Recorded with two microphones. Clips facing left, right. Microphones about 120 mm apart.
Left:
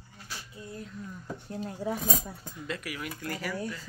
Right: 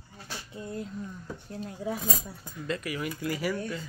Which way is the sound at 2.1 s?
Centre (ahead or behind).